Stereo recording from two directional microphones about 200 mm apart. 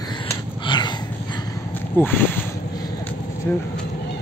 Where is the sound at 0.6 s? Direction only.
20° left (ahead or behind).